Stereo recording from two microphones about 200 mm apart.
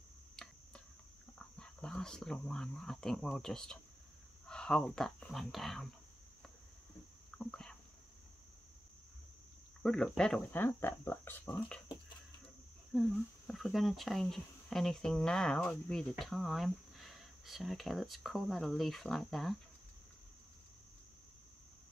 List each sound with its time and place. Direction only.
0.4 s cricket: 5° left (ahead or behind)
1.6 s speech: 5° left (ahead or behind)
7.2 s a sound: 5° left (ahead or behind)
9.8 s speech: 5° left (ahead or behind)
12.9 s speech: centre (ahead or behind)